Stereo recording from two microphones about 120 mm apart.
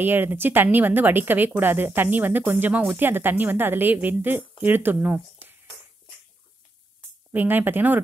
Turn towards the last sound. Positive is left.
turn(degrees=-15)  # may be behind; listen again after turning